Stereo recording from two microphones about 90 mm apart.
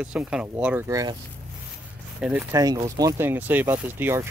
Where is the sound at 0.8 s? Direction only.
40° right (ahead or behind).